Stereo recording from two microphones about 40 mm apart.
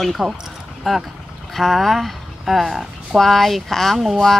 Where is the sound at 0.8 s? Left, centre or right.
Centre.